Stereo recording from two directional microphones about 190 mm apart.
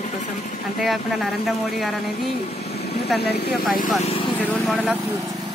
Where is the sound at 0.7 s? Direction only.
Centre (ahead or behind).